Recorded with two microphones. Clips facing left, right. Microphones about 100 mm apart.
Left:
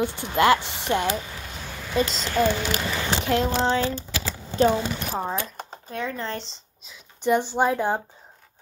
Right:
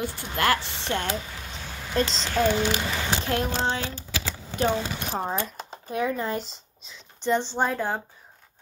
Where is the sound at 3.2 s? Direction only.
20° left (ahead or behind).